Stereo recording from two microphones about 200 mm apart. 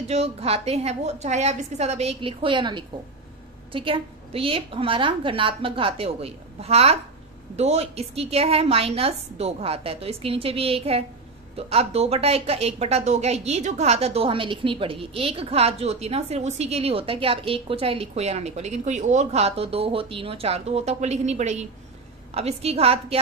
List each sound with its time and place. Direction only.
0.1 s a woman's voice: 30° right (ahead or behind)